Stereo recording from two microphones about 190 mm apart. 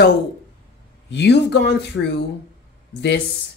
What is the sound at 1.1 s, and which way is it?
Speech, 65° left (ahead or behind).